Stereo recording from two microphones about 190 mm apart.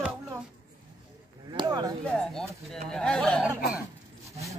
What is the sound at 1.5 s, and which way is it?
Speech, 20° right (ahead or behind).